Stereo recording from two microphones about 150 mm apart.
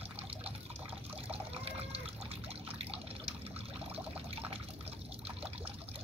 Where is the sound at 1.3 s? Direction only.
40° right (ahead or behind).